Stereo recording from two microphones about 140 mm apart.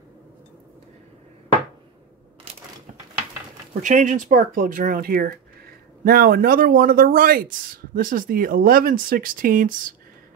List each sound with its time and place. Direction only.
3.8 s speech: 60° right (ahead or behind); by 9.9 s 80° right